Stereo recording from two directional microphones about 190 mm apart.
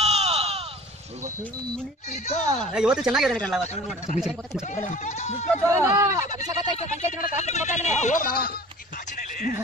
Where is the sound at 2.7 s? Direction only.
5° right (ahead or behind).